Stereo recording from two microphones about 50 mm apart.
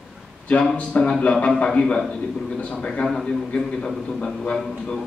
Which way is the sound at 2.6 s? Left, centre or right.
Left.